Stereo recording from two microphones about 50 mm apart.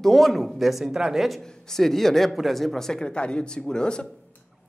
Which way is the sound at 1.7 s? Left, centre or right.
Centre.